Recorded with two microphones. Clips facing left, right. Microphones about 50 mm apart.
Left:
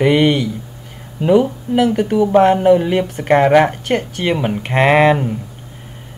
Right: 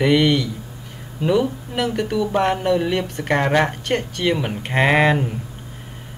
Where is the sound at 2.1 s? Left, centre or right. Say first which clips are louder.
Left 9 dB; left.